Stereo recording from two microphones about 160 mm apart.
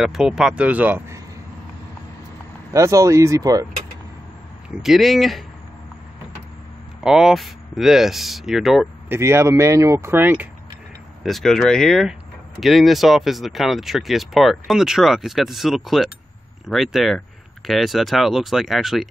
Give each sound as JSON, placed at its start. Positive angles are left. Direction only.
{"t": 0.0, "sound": "speech", "side_deg": -5}
{"t": 2.7, "sound": "speech", "side_deg": -20}
{"t": 4.6, "sound": "speech", "side_deg": 0}
{"t": 7.0, "sound": "speech", "side_deg": -5}
{"t": 9.1, "sound": "speech", "side_deg": -15}
{"t": 11.2, "sound": "speech", "side_deg": 0}